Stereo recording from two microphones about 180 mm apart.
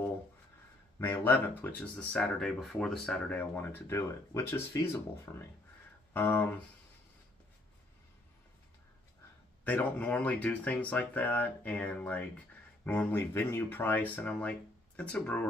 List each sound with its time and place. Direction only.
0.9 s speech: 15° left (ahead or behind)
9.7 s speech: 10° left (ahead or behind)